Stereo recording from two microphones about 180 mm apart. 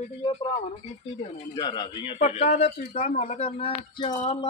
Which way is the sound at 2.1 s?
40° left (ahead or behind).